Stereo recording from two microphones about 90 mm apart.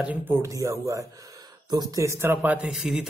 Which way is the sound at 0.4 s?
35° right (ahead or behind).